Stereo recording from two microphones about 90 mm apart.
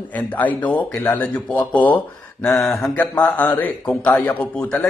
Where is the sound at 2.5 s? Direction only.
5° left (ahead or behind).